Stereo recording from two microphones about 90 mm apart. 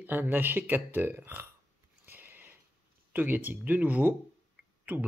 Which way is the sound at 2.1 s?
20° right (ahead or behind).